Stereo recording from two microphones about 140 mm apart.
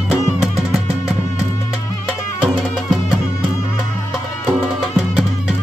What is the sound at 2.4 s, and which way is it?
Music, 5° right (ahead or behind).